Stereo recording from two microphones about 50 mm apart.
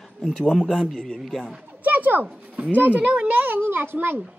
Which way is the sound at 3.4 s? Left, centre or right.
Right.